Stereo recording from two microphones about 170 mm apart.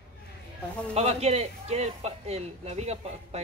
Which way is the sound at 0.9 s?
40° right (ahead or behind).